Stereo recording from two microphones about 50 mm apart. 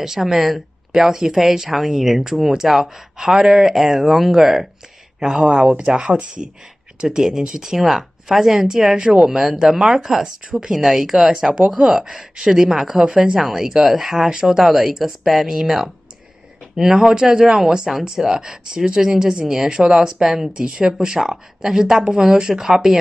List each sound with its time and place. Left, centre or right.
0.0 s speech: centre
5.2 s speech: centre
8.9 s speech: centre